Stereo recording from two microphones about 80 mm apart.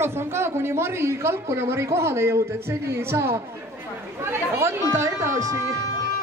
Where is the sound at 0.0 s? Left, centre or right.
Right.